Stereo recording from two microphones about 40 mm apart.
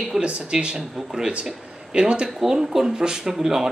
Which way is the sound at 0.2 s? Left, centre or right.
Right.